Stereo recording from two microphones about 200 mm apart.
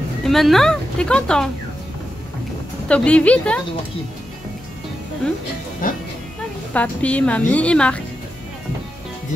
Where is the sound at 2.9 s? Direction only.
5° left (ahead or behind).